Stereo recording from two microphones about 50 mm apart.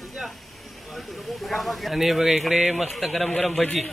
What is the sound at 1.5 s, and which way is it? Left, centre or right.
Speech, centre.